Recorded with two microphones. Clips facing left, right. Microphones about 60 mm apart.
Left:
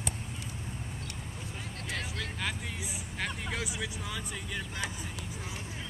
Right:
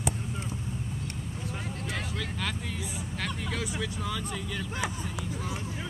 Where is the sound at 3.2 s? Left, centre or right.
Centre.